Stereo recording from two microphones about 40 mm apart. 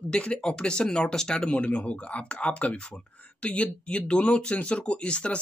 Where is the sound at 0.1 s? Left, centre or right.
Left.